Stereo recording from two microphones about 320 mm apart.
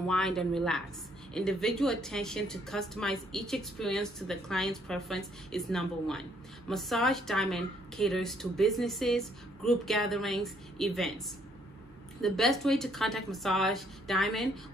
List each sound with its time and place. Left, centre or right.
0.0 s a woman's voice: centre